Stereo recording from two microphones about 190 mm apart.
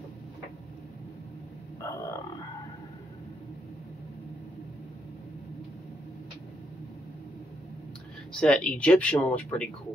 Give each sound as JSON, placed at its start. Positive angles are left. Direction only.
{"t": 1.8, "sound": "grunt", "side_deg": 15}
{"t": 8.3, "sound": "speech", "side_deg": 5}